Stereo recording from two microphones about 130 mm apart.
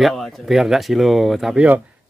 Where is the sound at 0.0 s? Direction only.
Centre (ahead or behind).